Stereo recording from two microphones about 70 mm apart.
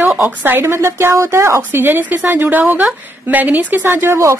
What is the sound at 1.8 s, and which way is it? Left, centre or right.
Speech, right.